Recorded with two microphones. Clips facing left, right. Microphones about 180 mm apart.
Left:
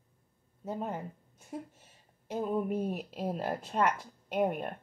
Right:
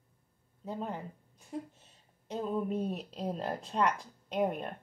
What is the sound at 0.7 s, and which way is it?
Speech, 15° left (ahead or behind).